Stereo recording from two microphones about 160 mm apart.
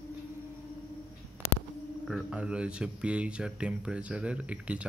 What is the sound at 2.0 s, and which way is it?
Speech, centre (ahead or behind).